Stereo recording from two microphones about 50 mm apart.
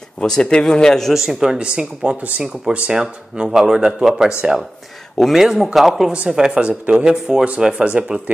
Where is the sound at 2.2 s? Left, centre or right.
Right.